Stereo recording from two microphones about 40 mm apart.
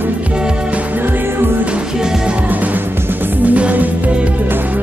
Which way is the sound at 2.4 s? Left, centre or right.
Right.